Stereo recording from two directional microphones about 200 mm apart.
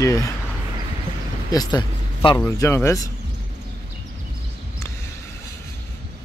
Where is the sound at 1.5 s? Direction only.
20° left (ahead or behind).